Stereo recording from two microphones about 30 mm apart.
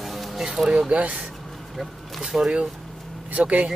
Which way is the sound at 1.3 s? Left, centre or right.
Centre.